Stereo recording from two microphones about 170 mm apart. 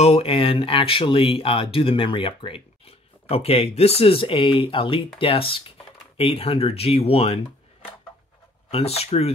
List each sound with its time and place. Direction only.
0.0 s speech: 35° left (ahead or behind)
8.6 s speech: 35° left (ahead or behind)